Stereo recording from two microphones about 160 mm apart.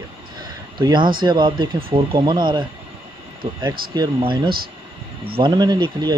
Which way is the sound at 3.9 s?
30° right (ahead or behind).